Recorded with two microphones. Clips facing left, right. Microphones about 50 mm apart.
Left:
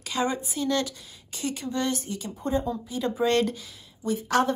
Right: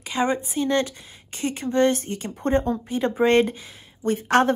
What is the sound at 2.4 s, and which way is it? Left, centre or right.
Speech, right.